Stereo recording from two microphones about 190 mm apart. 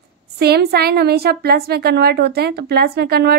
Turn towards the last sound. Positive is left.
turn(degrees=-55)  # may be behind; listen again after turning